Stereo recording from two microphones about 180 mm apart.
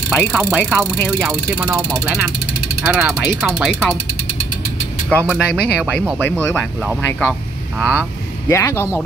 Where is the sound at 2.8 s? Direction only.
5° right (ahead or behind).